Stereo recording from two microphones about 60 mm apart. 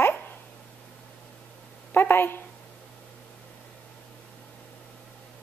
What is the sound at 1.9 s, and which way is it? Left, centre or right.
Speech, left.